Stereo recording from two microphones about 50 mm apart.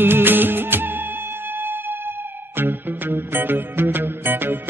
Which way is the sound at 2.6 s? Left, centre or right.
Right.